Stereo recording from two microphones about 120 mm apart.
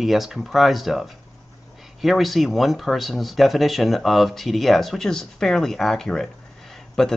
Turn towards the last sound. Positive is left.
turn(degrees=5)  # may be behind; listen again after turning